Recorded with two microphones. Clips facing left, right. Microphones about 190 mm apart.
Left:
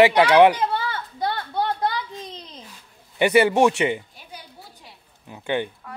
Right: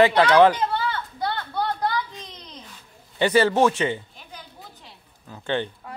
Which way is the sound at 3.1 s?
15° left (ahead or behind).